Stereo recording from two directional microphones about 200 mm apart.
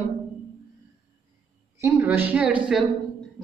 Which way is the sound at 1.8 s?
15° right (ahead or behind).